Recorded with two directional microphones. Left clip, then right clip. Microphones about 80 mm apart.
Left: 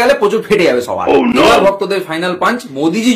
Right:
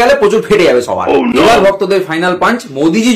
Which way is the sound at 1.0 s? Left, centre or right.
Centre.